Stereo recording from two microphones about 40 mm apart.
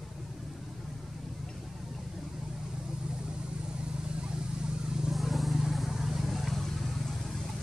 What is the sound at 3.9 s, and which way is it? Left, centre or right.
Vehicle, right.